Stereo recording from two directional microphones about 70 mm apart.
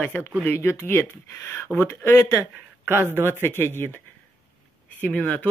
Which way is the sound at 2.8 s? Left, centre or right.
Right.